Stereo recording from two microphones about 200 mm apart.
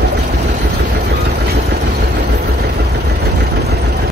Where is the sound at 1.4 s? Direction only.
55° right (ahead or behind).